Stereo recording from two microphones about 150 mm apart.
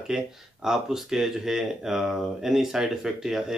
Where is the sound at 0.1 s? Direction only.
5° right (ahead or behind).